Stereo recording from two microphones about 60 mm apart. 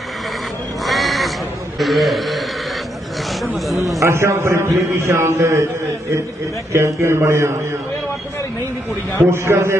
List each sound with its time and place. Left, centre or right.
0.8 s crow: centre
1.8 s a man's voice: centre
4.0 s a man's voice: right
9.2 s a man's voice: right